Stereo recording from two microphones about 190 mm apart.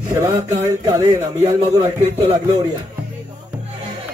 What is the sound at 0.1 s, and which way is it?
Speech, 15° right (ahead or behind).